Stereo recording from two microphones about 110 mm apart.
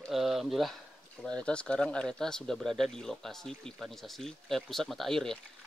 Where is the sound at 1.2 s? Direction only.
10° left (ahead or behind).